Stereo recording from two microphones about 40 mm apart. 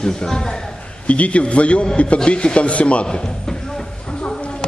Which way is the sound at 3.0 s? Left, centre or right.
Centre.